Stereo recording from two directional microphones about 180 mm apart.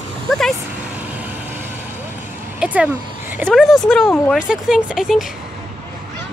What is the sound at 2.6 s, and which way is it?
A woman's voice, 10° right (ahead or behind).